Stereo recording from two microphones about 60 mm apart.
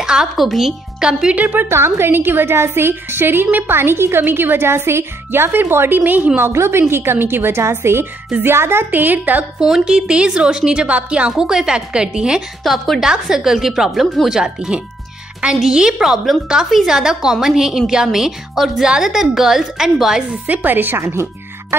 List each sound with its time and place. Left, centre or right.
0.0 s a woman's voice: centre
1.3 s a woman's voice: right
1.7 s a woman's voice: right
6.5 s a woman's voice: right
8.9 s a woman's voice: right
9.8 s a woman's voice: centre
12.6 s a woman's voice: centre
20.4 s a woman's voice: right
21.0 s music: right